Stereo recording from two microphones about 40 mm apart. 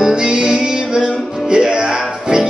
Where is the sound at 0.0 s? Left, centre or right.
Right.